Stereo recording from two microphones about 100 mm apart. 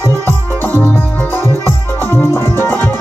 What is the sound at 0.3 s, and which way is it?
Music, 20° left (ahead or behind).